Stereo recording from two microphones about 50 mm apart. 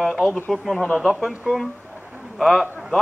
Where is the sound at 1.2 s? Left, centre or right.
Centre.